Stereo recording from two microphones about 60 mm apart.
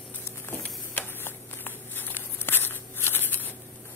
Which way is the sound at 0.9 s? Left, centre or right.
Left.